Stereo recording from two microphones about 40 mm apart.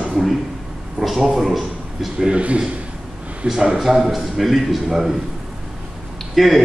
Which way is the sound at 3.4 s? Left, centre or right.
Centre.